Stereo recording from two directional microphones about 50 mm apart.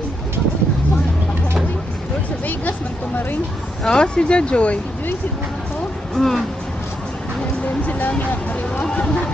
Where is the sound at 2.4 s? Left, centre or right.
Left.